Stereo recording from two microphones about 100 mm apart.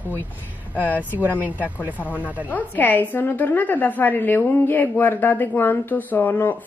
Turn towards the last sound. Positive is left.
turn(degrees=20)  # may be behind; listen again after turning